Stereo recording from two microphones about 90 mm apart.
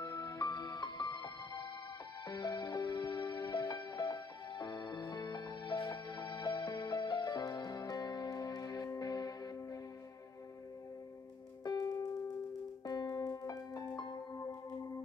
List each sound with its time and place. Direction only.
0.0 s music: 45° left (ahead or behind)
11.6 s music: 45° left (ahead or behind)
14.3 s singing bowl: 35° left (ahead or behind)